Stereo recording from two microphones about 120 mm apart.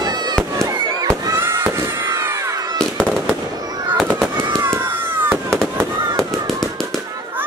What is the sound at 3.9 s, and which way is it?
Fireworks, centre (ahead or behind).